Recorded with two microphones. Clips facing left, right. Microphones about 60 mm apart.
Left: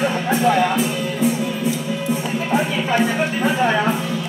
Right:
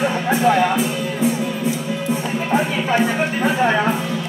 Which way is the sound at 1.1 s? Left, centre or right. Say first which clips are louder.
Even; right.